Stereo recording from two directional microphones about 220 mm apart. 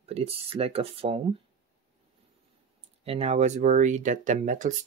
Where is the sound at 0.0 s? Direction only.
25° right (ahead or behind).